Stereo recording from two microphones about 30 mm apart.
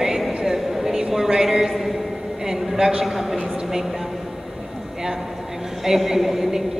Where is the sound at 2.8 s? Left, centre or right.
Centre.